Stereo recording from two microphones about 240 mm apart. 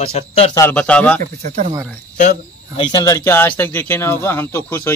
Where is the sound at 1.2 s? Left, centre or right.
Right.